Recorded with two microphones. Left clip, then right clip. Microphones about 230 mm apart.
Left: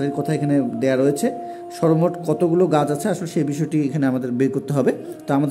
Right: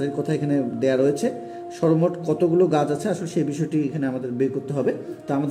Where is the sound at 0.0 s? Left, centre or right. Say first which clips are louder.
Left 2 dB; centre.